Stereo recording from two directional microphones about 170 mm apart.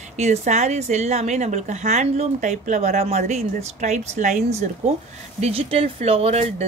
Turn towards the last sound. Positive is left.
turn(degrees=-40)  # may be behind; listen again after turning